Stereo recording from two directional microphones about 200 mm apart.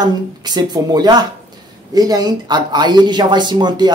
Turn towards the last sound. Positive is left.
turn(degrees=-20)  # may be behind; listen again after turning